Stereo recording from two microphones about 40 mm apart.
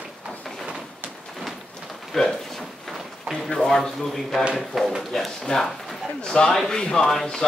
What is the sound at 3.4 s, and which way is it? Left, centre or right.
A man's voice, centre.